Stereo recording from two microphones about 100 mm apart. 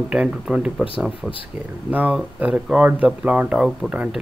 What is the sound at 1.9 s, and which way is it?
Speech, 15° right (ahead or behind).